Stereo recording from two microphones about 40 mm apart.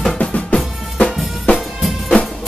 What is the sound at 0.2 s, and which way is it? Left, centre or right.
Drum, left.